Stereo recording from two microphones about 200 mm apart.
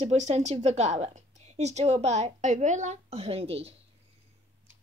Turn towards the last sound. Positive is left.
turn(degrees=-30)  # may be behind; listen again after turning